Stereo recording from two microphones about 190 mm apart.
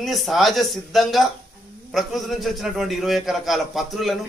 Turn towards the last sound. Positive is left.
turn(degrees=0)  # may be behind; listen again after turning